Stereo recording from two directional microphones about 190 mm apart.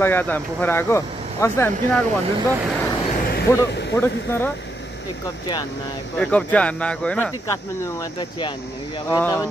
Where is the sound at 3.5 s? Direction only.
15° left (ahead or behind).